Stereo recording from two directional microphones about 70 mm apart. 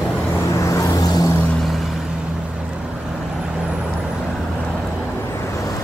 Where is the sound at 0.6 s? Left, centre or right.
Left.